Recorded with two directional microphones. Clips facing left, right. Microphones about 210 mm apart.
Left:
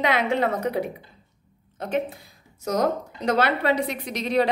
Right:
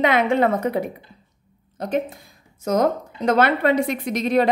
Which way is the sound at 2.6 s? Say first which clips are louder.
Right 4 dB; 50° right (ahead or behind).